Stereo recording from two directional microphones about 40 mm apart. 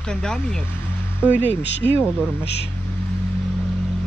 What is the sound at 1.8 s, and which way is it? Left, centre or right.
Speech, left.